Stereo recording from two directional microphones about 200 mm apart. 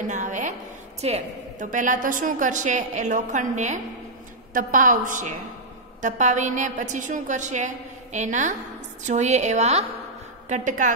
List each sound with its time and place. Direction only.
0.0 s a woman's voice: 40° right (ahead or behind)